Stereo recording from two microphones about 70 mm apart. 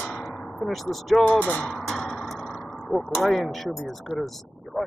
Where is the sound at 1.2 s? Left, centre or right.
Left.